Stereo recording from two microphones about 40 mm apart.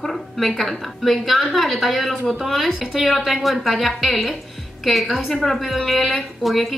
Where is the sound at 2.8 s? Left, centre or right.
Centre.